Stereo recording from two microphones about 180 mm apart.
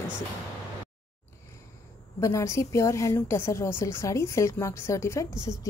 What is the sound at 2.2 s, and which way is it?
A woman's voice, 15° left (ahead or behind).